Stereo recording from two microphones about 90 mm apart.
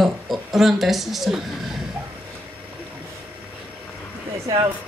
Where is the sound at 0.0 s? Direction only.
Centre (ahead or behind).